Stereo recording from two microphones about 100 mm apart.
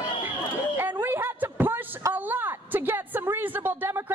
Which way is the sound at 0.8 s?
20° right (ahead or behind).